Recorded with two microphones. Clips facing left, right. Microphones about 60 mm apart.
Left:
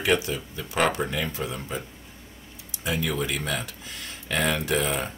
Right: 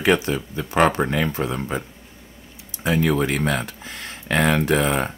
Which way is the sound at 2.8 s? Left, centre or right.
Right.